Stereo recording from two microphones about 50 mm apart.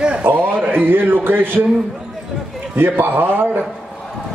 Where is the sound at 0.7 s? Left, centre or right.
Right.